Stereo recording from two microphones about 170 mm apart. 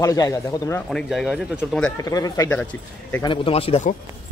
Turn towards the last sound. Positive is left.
turn(degrees=40)  # may be behind; listen again after turning